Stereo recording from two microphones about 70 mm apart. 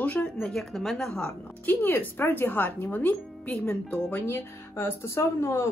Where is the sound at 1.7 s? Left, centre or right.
Left.